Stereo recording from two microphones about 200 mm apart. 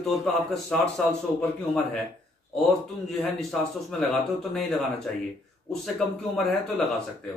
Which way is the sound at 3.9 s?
Centre (ahead or behind).